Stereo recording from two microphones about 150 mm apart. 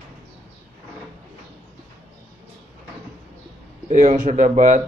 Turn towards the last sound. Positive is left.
turn(degrees=-55)  # may be behind; listen again after turning